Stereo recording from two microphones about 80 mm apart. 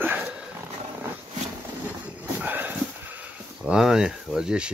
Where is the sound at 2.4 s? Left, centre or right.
Right.